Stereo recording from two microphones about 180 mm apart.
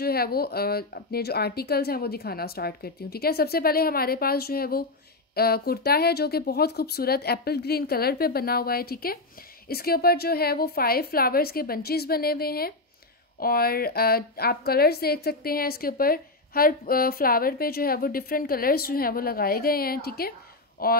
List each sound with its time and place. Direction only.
0.0 s a woman's voice: 60° left (ahead or behind)